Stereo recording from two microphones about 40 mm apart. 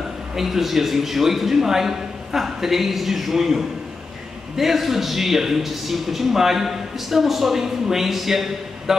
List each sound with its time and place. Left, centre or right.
0.4 s a man's voice: centre